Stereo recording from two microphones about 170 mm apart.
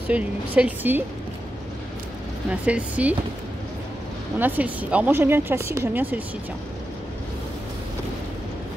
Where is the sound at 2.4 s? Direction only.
5° right (ahead or behind).